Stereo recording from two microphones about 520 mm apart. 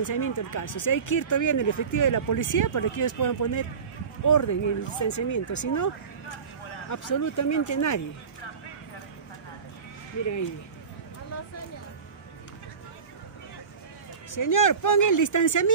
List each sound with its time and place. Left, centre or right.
0.0 s speech: left
6.9 s speech: left
10.2 s speech: left
14.3 s speech: left